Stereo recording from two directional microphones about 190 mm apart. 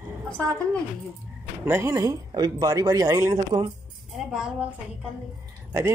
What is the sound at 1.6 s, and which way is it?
A man's voice, 15° right (ahead or behind).